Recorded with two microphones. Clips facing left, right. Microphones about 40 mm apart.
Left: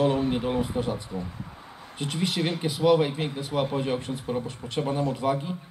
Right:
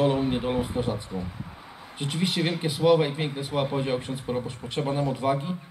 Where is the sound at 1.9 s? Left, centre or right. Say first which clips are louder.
Right 1 dB; right.